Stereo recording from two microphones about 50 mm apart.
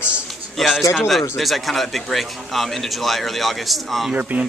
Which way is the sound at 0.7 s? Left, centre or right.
Centre.